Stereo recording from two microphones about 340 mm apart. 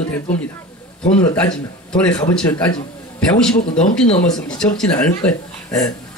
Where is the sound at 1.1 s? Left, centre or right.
Centre.